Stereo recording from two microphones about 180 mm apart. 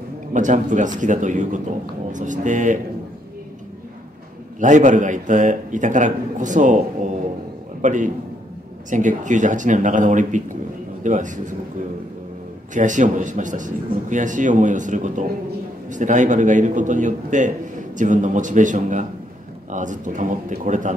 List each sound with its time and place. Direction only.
0.3 s a man's voice: 45° right (ahead or behind)
4.6 s a man's voice: 45° right (ahead or behind)
12.7 s a man's voice: 45° right (ahead or behind)